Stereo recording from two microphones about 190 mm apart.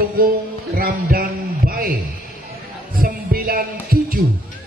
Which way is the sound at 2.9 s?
50° right (ahead or behind).